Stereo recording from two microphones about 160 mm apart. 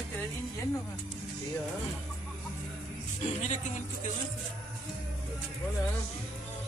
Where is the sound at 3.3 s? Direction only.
45° left (ahead or behind).